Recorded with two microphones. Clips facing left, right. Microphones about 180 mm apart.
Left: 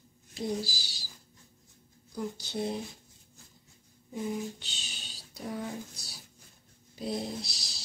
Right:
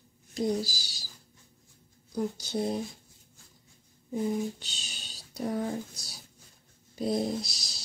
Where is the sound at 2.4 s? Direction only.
45° right (ahead or behind).